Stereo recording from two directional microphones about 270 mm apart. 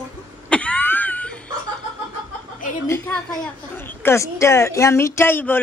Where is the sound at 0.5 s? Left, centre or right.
Centre.